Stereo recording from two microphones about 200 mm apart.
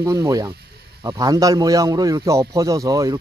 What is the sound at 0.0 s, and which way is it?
A man's voice, 15° right (ahead or behind).